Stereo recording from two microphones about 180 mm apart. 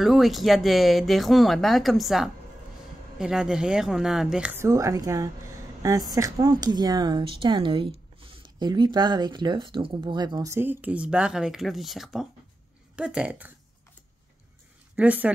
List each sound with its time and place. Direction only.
0.0 s speech: centre (ahead or behind)
15.0 s speech: 10° right (ahead or behind)